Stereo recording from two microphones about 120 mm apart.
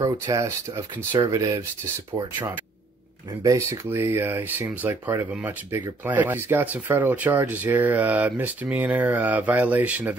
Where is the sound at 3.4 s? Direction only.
25° right (ahead or behind).